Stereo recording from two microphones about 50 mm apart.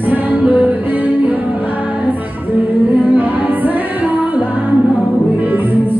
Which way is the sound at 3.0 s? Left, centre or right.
Right.